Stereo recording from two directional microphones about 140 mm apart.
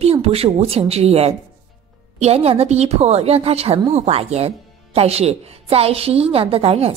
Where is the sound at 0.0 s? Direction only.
45° right (ahead or behind).